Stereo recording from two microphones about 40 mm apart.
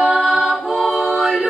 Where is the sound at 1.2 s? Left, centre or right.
Centre.